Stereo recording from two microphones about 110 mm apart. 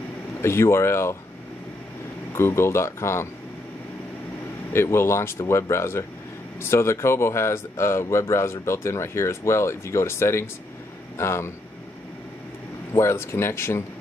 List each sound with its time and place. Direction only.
0.4 s speech: 25° left (ahead or behind)
2.3 s speech: 25° left (ahead or behind)
4.7 s speech: 25° left (ahead or behind)
12.9 s speech: 25° left (ahead or behind)